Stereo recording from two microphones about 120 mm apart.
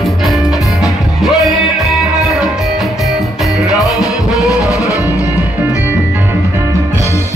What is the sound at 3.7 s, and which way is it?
Music, 30° left (ahead or behind).